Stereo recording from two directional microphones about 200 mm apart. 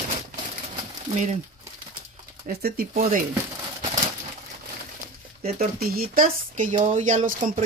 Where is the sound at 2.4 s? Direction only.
45° right (ahead or behind).